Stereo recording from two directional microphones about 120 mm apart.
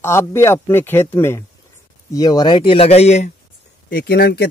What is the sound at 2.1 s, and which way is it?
Speech, 35° left (ahead or behind).